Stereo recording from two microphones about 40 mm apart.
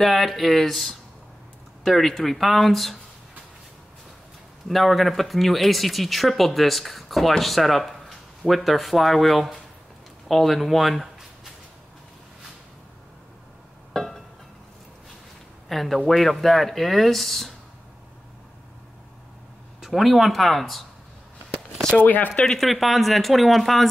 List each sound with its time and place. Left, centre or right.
0.0 s speech: centre
4.6 s speech: centre
13.9 s music: centre
15.7 s speech: centre
19.8 s speech: centre
22.0 s speech: left
22.6 s speech: centre